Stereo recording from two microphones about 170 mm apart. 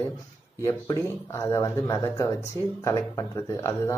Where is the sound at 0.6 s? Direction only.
20° left (ahead or behind).